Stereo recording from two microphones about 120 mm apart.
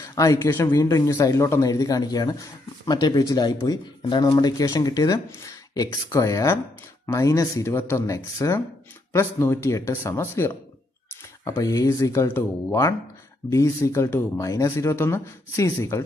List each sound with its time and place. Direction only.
0.0 s speech: 25° left (ahead or behind)
11.6 s speech: 30° left (ahead or behind)